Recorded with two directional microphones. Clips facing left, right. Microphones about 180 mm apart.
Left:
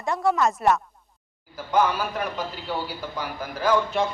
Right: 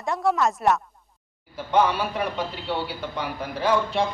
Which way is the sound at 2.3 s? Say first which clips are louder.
Right 2 dB; 25° right (ahead or behind).